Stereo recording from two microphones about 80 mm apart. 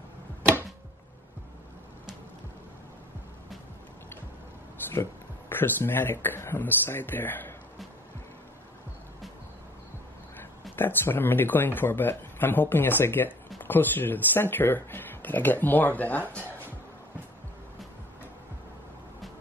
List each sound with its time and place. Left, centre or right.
5.5 s speech: left
10.8 s speech: left